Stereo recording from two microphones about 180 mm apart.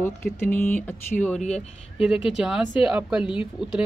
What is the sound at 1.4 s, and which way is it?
Speech, 40° left (ahead or behind).